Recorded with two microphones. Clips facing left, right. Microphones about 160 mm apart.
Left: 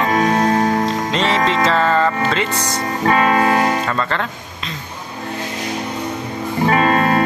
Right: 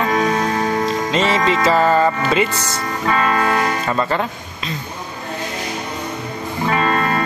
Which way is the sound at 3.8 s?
10° right (ahead or behind).